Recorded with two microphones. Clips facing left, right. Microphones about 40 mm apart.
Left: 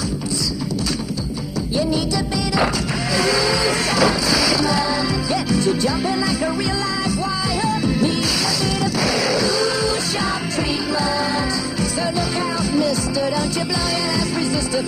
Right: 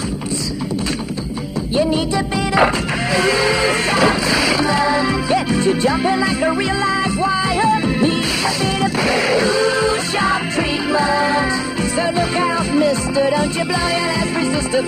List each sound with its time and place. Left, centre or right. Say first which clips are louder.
3.2 s music: right 3 dB; right
9.0 s music: right 4 dB; right